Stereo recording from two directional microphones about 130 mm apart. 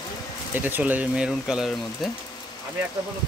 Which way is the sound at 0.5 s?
15° right (ahead or behind).